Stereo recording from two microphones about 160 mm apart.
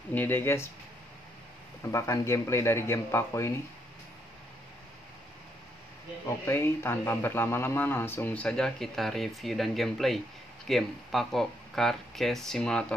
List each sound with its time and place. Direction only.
0.1 s a man's voice: 10° left (ahead or behind)
1.8 s a man's voice: 20° left (ahead or behind)
6.2 s a man's voice: 15° left (ahead or behind)